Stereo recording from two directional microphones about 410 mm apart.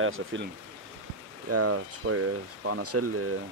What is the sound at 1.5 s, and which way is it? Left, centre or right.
Speech, right.